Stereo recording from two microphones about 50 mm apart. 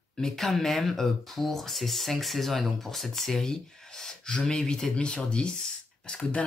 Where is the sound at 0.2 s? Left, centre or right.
Centre.